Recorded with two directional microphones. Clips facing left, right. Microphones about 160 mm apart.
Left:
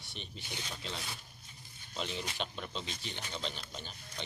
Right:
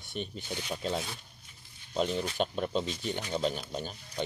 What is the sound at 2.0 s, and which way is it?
Speech, 45° right (ahead or behind).